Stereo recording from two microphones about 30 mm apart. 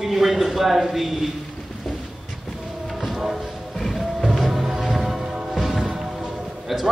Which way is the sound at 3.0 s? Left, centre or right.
Centre.